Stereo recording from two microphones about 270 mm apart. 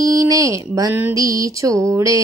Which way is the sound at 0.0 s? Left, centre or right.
Centre.